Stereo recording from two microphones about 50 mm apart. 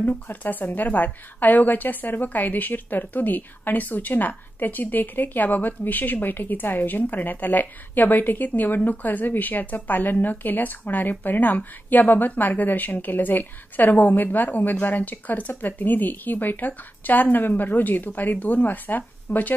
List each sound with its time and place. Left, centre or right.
0.3 s a woman's voice: left